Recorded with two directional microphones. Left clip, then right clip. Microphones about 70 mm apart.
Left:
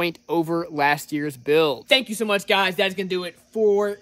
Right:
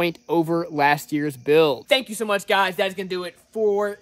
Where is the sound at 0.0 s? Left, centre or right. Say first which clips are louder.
Right 2 dB; left.